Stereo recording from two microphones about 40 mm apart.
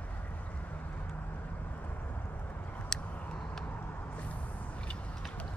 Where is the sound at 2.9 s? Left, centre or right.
Left.